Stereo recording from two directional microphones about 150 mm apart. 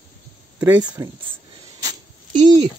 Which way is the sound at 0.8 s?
25° right (ahead or behind).